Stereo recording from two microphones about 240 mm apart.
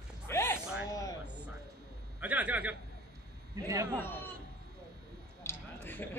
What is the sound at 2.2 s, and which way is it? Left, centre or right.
A man's voice, centre.